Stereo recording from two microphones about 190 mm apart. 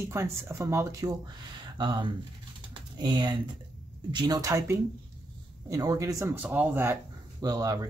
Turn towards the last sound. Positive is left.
turn(degrees=-20)  # may be behind; listen again after turning